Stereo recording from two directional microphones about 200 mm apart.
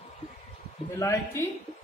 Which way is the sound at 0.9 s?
15° left (ahead or behind).